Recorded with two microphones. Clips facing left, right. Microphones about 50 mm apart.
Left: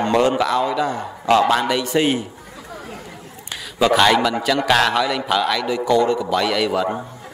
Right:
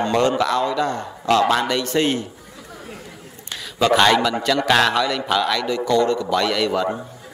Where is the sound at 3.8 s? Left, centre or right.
Centre.